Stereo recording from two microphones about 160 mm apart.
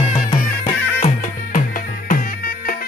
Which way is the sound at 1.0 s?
45° left (ahead or behind).